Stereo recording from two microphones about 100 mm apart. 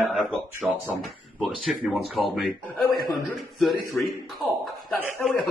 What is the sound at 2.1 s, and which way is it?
A man's voice, centre (ahead or behind).